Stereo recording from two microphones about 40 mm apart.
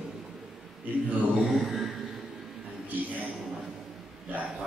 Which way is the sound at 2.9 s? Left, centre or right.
Right.